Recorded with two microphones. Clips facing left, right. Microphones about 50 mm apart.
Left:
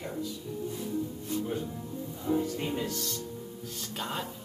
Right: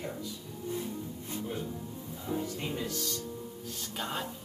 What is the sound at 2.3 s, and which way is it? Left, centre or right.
Music, centre.